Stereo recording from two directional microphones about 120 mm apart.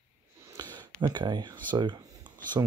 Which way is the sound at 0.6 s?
35° right (ahead or behind).